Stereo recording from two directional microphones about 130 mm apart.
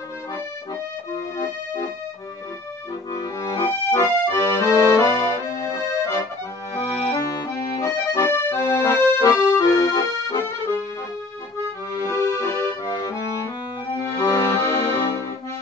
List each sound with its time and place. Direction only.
3.1 s accordion: 25° left (ahead or behind)
11.9 s accordion: 20° left (ahead or behind)